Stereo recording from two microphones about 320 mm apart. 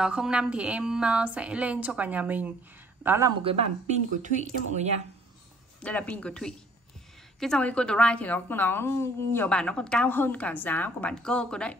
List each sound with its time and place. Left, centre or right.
0.0 s a woman's voice: centre; by 5.0 s right
5.8 s a woman's voice: centre